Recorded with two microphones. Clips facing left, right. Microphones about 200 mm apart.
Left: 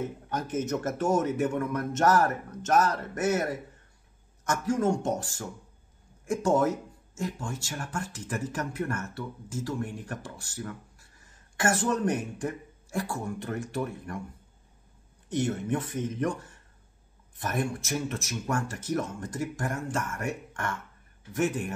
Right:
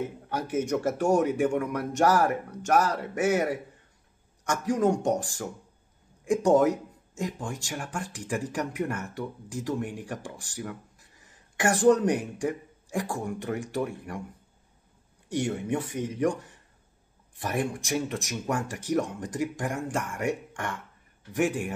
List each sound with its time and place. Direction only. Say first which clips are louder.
0.3 s speech: right 3 dB; 10° right (ahead or behind)
15.2 s speech: even; 10° right (ahead or behind)